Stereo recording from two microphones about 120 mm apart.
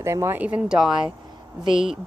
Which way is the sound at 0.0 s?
25° right (ahead or behind).